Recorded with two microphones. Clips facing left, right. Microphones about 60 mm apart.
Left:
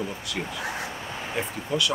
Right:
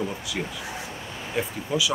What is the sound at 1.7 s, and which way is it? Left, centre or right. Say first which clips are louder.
Speech: even; centre.